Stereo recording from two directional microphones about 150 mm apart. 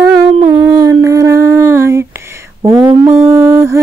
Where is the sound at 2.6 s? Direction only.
30° right (ahead or behind).